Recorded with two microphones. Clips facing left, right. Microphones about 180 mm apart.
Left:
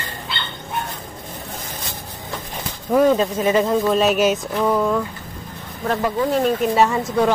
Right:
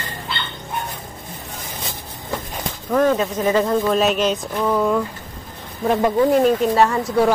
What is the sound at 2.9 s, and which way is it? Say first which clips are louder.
Speech: left 2 dB; 10° left (ahead or behind).